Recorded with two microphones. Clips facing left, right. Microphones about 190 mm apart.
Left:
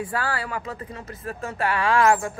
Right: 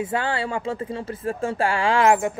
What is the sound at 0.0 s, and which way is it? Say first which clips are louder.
Speech: right 3 dB; 25° right (ahead or behind).